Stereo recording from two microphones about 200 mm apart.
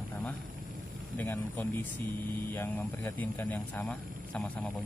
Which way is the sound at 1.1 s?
10° left (ahead or behind).